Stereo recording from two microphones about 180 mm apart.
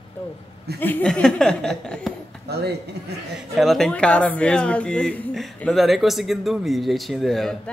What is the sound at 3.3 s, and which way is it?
Speech, centre (ahead or behind).